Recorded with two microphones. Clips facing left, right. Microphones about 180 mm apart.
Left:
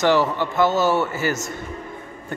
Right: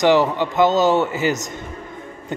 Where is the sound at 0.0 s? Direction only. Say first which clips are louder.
Right 3 dB; 15° right (ahead or behind).